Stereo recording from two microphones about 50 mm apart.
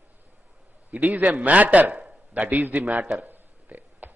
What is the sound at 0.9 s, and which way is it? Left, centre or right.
A man's voice, right.